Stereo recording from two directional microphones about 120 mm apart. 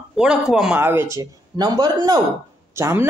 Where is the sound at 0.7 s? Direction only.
20° right (ahead or behind).